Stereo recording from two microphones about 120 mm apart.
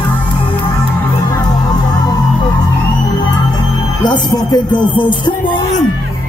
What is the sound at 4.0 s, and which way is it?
Music, 35° left (ahead or behind).